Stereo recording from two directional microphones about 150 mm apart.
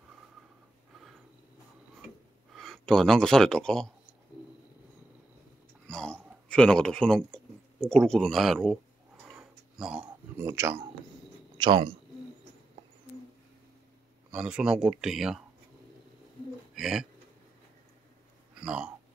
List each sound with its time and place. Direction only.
2.5 s speech: centre (ahead or behind)
5.9 s a sound: 5° left (ahead or behind)
10.3 s a man's voice: 15° right (ahead or behind)
11.5 s speech: 30° right (ahead or behind)
14.3 s speech: 5° right (ahead or behind)
16.7 s speech: 5° right (ahead or behind)
18.6 s speech: 5° right (ahead or behind)